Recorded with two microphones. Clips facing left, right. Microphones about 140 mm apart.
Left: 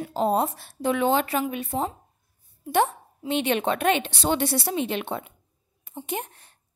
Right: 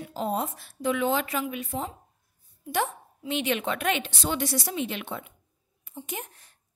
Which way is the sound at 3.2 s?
30° left (ahead or behind).